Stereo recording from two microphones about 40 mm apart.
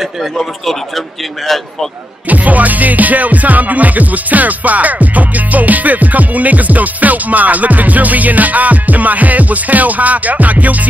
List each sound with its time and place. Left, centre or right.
0.2 s a man's voice: centre
2.2 s music: right